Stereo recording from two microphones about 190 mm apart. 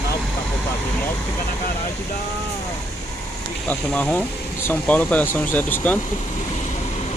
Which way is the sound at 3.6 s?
5° left (ahead or behind).